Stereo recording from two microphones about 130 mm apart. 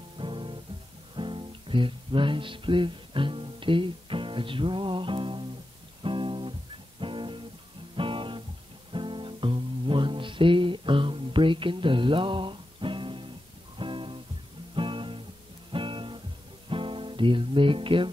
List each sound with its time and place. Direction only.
0.2 s music: 40° right (ahead or behind)
7.9 s guitar: 40° right (ahead or behind)
8.9 s music: 40° right (ahead or behind)